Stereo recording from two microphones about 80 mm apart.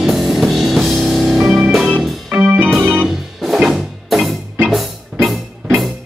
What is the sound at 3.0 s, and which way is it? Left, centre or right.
Music, centre.